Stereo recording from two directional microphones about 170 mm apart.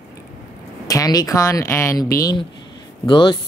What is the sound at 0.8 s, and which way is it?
Speech, 20° left (ahead or behind).